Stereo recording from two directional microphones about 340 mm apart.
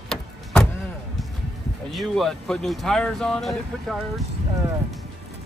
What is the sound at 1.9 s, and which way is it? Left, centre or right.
Speech, centre.